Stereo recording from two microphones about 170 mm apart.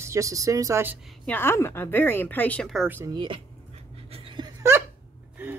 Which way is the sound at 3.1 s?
30° right (ahead or behind).